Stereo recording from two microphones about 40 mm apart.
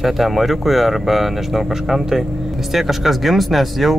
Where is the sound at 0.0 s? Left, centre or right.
Centre.